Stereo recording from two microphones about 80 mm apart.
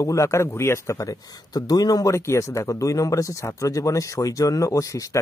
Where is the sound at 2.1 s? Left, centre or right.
Left.